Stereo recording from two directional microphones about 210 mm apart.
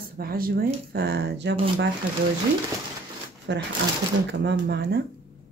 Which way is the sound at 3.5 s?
55° right (ahead or behind).